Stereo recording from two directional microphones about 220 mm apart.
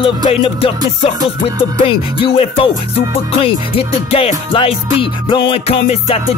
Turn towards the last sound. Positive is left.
turn(degrees=25)  # may be behind; listen again after turning